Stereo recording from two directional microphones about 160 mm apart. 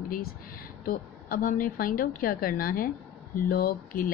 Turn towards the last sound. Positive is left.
turn(degrees=65)  # may be behind; listen again after turning